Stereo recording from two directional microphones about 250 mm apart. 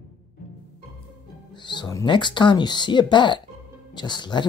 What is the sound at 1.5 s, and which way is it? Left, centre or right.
Speech, centre.